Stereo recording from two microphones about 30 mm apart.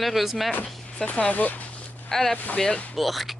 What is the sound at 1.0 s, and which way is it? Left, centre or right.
Speech, left.